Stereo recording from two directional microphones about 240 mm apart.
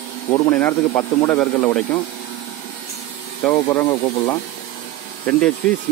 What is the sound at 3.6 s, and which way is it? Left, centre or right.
Speech, centre.